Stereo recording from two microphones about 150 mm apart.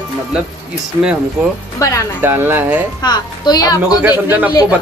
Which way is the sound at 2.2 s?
15° right (ahead or behind).